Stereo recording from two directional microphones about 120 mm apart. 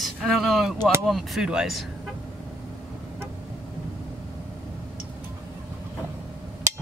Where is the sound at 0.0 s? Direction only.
Centre (ahead or behind).